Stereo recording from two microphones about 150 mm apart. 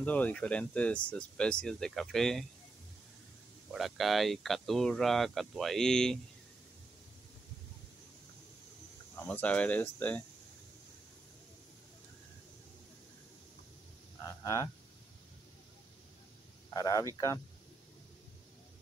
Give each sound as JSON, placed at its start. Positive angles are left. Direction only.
{"t": 0.0, "sound": "speech", "side_deg": 10}
{"t": 3.7, "sound": "speech", "side_deg": 0}
{"t": 9.1, "sound": "speech", "side_deg": 10}
{"t": 14.2, "sound": "speech", "side_deg": 25}
{"t": 16.7, "sound": "speech", "side_deg": 25}